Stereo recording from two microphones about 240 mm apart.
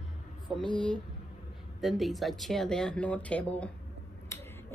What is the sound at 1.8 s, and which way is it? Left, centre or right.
A woman's voice, centre.